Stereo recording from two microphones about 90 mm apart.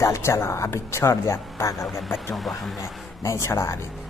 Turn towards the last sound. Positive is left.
turn(degrees=35)  # may be behind; listen again after turning